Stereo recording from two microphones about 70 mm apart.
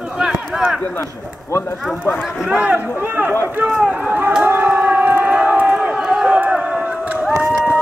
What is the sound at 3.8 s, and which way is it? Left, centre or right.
Speech, centre.